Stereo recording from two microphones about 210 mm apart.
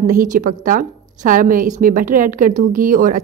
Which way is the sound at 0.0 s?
40° right (ahead or behind).